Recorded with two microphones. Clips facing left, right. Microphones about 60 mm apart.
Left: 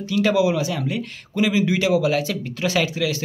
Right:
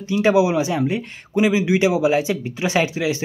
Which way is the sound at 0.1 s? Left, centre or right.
Right.